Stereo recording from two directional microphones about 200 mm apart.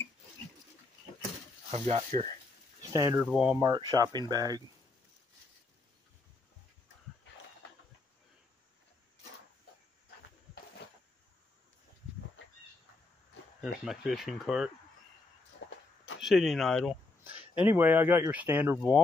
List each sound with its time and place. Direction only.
1.7 s speech: 30° right (ahead or behind)
2.8 s speech: 15° right (ahead or behind)
3.3 s speech: centre (ahead or behind)
3.5 s speech: 20° right (ahead or behind)
13.6 s speech: centre (ahead or behind)
15.6 s a sound: 60° left (ahead or behind)
16.2 s speech: centre (ahead or behind)
17.4 s speech: 10° right (ahead or behind)